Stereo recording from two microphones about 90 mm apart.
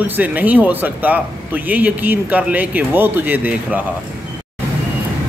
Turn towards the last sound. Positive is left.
turn(degrees=-20)  # may be behind; listen again after turning